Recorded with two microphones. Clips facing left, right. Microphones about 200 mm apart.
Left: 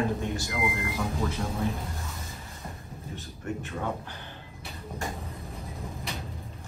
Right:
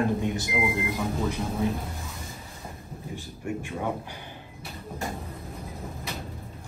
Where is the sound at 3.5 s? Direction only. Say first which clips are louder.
Right 2 dB; 10° right (ahead or behind).